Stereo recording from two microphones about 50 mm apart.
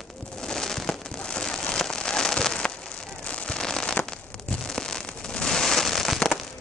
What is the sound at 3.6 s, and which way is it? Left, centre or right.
Fireworks, centre.